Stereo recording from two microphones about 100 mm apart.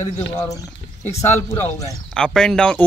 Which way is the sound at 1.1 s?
25° left (ahead or behind).